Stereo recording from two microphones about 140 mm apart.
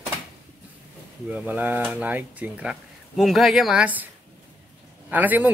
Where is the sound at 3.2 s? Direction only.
Centre (ahead or behind).